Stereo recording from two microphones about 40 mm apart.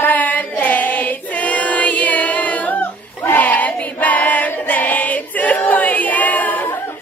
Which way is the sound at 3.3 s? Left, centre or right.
Left.